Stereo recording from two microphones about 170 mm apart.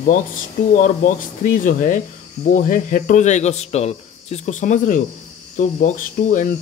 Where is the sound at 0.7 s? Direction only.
50° left (ahead or behind).